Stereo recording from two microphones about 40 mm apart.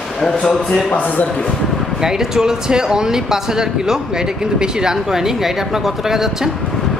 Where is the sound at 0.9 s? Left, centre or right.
Left.